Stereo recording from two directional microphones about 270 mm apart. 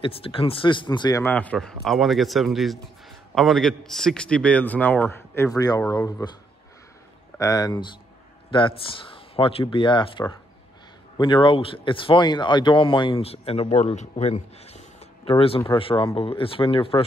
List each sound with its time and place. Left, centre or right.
0.0 s a man's voice: centre
7.3 s speech: centre